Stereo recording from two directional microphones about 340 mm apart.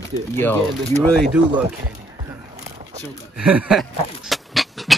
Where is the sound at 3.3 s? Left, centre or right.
Centre.